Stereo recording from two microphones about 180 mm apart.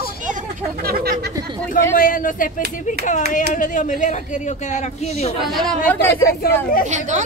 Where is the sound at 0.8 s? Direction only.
60° right (ahead or behind).